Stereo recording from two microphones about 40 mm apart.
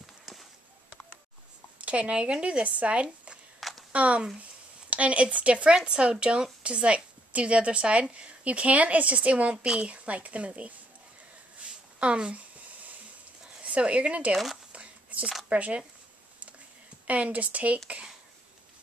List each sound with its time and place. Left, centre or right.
0.0 s a sound: centre
1.8 s a woman's voice: right
11.6 s a sound: right
13.6 s speech: right
14.3 s speech: centre
14.7 s whispering: right
15.5 s a woman's voice: right
17.1 s a woman's voice: right